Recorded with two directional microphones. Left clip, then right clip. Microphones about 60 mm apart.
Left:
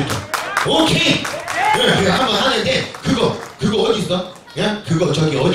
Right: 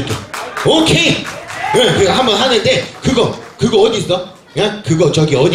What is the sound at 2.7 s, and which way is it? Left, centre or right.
Speech, right.